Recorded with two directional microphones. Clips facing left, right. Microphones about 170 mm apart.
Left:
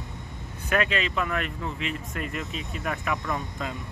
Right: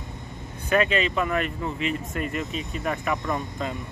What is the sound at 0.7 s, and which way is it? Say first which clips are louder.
Speech: right 4 dB; centre (ahead or behind).